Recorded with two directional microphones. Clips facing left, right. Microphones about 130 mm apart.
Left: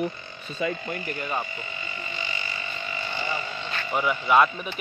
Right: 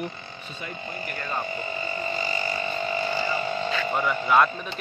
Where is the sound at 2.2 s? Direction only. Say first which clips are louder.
Right 7 dB; 40° right (ahead or behind).